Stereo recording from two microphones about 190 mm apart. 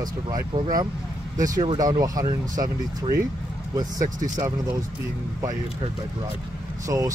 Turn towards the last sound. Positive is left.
turn(degrees=-15)  # may be behind; listen again after turning